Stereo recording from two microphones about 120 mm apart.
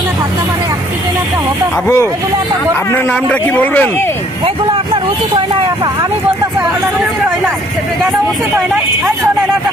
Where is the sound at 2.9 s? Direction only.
15° left (ahead or behind).